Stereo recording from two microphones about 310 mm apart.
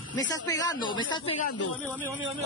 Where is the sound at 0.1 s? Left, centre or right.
Centre.